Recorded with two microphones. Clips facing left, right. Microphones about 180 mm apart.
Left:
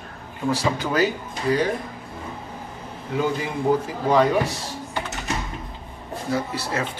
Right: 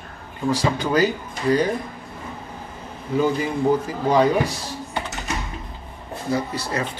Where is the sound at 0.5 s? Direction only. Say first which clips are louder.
Right 3 dB; centre (ahead or behind).